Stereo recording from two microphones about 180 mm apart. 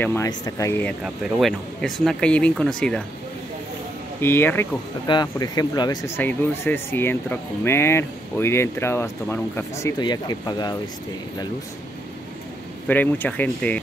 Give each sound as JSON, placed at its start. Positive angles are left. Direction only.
{"t": 0.0, "sound": "speech", "side_deg": 10}
{"t": 1.0, "sound": "speech", "side_deg": 0}
{"t": 4.2, "sound": "speech", "side_deg": 10}
{"t": 5.0, "sound": "speech", "side_deg": 25}
{"t": 12.8, "sound": "speech", "side_deg": 10}